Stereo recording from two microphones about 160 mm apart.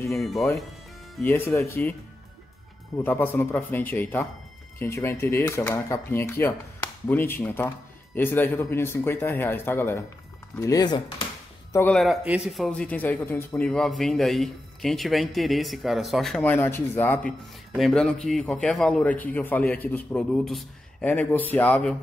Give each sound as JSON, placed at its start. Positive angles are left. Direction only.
{"t": 0.2, "sound": "a man's voice", "side_deg": 0}
{"t": 1.2, "sound": "speech", "side_deg": 15}
{"t": 3.0, "sound": "speech", "side_deg": 15}
{"t": 11.9, "sound": "speech", "side_deg": 0}
{"t": 13.7, "sound": "a man's voice", "side_deg": 0}
{"t": 17.7, "sound": "speech", "side_deg": 0}